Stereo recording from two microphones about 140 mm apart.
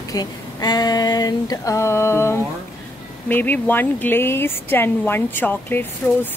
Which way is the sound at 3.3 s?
15° left (ahead or behind).